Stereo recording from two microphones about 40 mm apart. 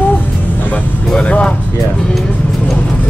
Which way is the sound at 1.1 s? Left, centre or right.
Left.